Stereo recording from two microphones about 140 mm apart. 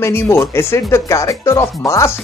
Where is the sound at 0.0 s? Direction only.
20° left (ahead or behind).